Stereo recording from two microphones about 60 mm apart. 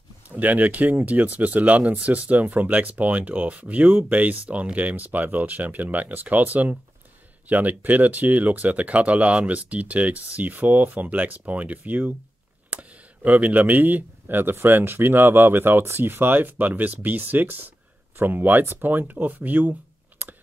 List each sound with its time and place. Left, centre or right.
0.3 s speech: right